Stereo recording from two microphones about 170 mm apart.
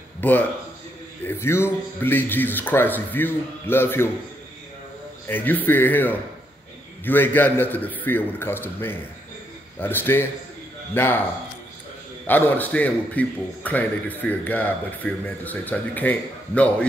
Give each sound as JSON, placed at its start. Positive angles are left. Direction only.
{"t": 0.2, "sound": "a man's voice", "side_deg": 10}
{"t": 5.3, "sound": "a man's voice", "side_deg": 10}
{"t": 12.3, "sound": "a man's voice", "side_deg": 10}